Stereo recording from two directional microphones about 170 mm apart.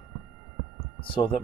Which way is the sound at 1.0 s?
30° left (ahead or behind).